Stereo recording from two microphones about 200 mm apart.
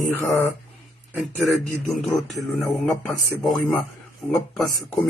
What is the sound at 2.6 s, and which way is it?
Speech, centre (ahead or behind).